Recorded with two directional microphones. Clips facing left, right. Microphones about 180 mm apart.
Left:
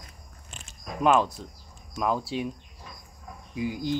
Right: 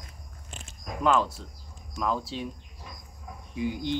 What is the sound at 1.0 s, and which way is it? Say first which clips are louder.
Speech: left 2 dB; 15° left (ahead or behind).